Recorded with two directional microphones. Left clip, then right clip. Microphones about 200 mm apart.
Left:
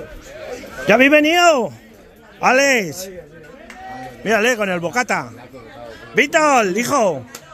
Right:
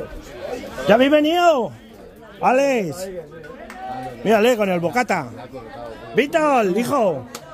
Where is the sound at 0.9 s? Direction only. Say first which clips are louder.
Left 3 dB; 25° left (ahead or behind).